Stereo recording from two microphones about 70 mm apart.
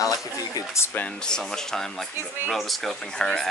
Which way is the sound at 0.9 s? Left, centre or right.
Centre.